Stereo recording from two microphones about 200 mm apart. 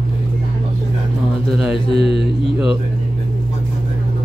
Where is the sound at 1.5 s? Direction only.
5° right (ahead or behind).